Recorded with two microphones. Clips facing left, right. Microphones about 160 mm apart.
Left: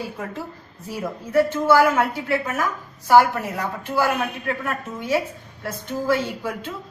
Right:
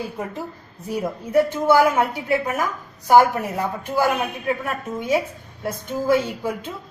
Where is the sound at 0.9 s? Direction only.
15° right (ahead or behind).